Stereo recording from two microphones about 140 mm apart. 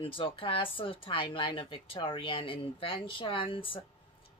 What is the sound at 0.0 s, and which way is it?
Speech, 40° left (ahead or behind).